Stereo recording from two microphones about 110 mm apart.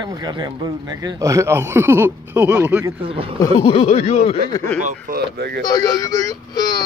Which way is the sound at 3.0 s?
55° right (ahead or behind).